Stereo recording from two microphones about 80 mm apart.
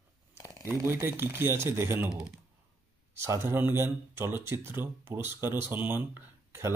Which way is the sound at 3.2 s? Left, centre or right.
Right.